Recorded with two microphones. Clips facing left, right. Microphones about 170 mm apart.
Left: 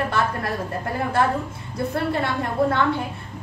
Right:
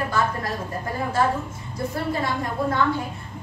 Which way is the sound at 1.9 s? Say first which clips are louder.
Left 2 dB; 65° left (ahead or behind).